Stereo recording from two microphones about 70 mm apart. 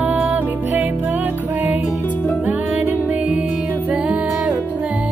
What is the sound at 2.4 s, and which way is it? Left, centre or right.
Music, right.